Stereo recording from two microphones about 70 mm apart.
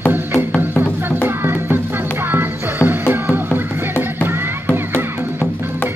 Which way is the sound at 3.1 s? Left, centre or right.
Right.